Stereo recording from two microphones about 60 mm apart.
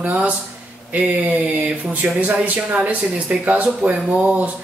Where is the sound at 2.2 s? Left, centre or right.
Right.